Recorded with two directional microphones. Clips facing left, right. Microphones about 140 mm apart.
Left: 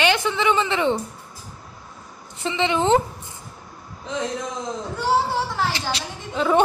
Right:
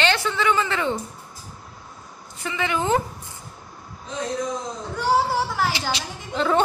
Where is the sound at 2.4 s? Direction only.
25° left (ahead or behind).